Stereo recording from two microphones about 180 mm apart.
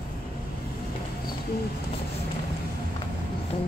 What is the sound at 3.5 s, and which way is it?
Music, 30° left (ahead or behind).